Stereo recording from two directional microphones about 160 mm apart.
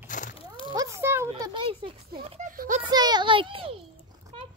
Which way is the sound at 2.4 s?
55° right (ahead or behind).